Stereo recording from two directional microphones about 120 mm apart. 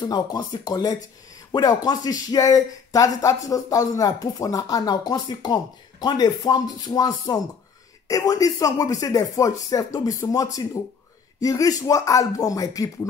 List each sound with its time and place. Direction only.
0.0 s speech: 35° left (ahead or behind)